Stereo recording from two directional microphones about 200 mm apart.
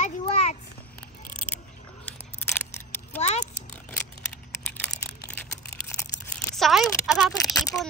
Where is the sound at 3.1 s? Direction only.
35° left (ahead or behind).